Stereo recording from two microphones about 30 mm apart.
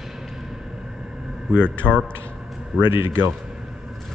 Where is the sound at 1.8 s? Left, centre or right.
Right.